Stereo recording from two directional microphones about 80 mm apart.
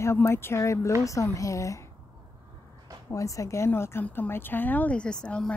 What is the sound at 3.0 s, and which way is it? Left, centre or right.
A woman's voice, left.